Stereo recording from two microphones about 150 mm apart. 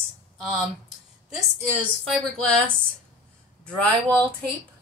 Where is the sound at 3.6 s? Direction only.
10° left (ahead or behind).